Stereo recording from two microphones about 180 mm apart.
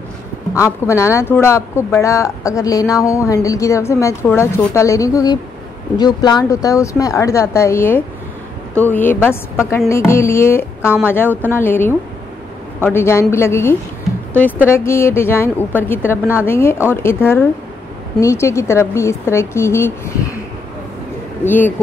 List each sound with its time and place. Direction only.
0.6 s speech: 15° left (ahead or behind)
14.9 s speech: 15° left (ahead or behind)
21.5 s speech: 10° left (ahead or behind)